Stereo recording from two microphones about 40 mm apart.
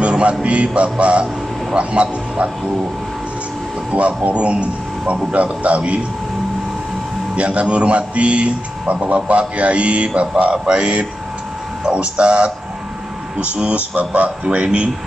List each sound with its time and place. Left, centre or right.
0.0 s a man's voice: right
3.9 s a man's voice: right
7.3 s a man's voice: right